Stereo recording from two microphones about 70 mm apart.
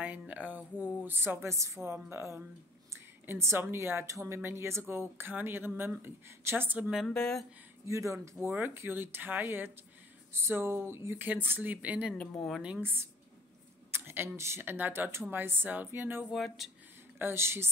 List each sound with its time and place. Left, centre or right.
0.0 s speech: right
7.1 s speech: centre
7.8 s speech: right
8.5 s speech: right
12.8 s speech: right
16.3 s speech: centre
17.2 s speech: right